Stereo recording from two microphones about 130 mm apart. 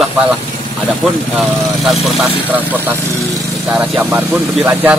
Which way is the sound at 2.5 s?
15° right (ahead or behind).